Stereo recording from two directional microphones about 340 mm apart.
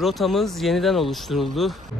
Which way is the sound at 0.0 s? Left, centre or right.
Centre.